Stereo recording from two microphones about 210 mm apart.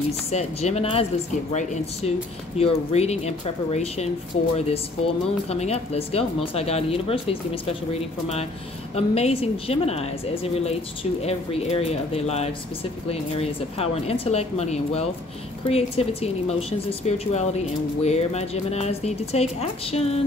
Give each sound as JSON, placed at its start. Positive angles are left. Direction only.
{"t": 0.3, "sound": "speech", "side_deg": 30}
{"t": 8.9, "sound": "speech", "side_deg": 30}